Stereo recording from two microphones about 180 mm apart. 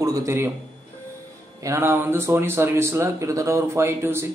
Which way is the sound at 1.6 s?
15° right (ahead or behind).